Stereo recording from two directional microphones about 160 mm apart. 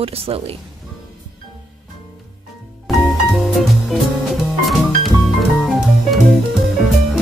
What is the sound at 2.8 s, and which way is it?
Music, centre (ahead or behind).